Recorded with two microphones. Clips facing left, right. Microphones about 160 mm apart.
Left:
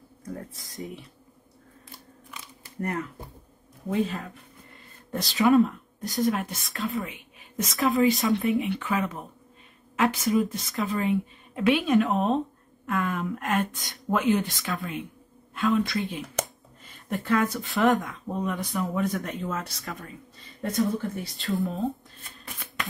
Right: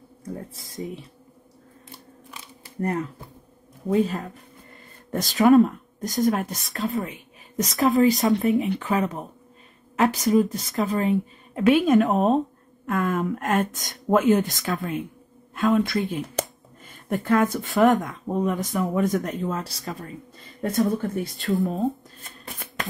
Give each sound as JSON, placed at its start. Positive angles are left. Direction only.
{"t": 0.2, "sound": "speech", "side_deg": -30}
{"t": 0.7, "sound": "a woman's voice", "side_deg": 0}
{"t": 2.8, "sound": "a woman's voice", "side_deg": -30}
{"t": 7.6, "sound": "a woman's voice", "side_deg": 0}
{"t": 8.4, "sound": "speech", "side_deg": -40}
{"t": 10.6, "sound": "a woman's voice", "side_deg": 0}
{"t": 10.9, "sound": "speech", "side_deg": -40}
{"t": 16.1, "sound": "a sound", "side_deg": -45}
{"t": 18.0, "sound": "speech", "side_deg": -45}
{"t": 20.7, "sound": "speech", "side_deg": -55}
{"t": 21.5, "sound": "a woman's voice", "side_deg": 0}